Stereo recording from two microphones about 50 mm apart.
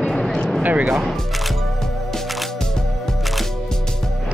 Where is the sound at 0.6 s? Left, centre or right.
Right.